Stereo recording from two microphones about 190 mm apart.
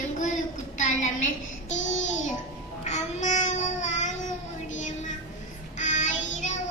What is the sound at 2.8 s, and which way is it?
Child singing, 40° left (ahead or behind).